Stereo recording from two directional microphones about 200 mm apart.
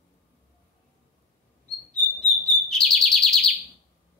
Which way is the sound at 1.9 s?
5° left (ahead or behind).